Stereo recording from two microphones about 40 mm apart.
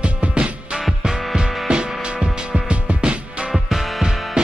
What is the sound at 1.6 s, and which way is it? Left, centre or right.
Music, right.